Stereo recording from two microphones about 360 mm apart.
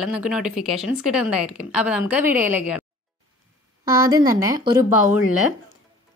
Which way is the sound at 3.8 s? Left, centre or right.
Centre.